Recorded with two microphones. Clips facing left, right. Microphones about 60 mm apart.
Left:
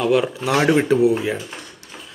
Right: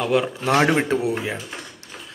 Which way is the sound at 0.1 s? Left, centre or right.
Right.